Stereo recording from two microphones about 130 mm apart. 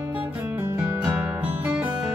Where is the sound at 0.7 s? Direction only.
25° right (ahead or behind).